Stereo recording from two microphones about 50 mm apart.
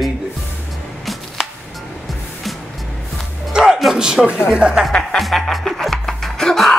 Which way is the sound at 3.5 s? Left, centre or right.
Centre.